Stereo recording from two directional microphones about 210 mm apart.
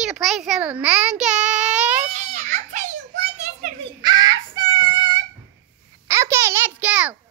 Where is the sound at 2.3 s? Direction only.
40° right (ahead or behind).